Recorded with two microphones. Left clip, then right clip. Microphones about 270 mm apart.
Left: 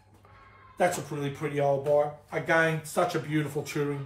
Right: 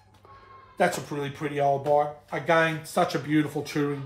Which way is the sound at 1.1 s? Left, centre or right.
Right.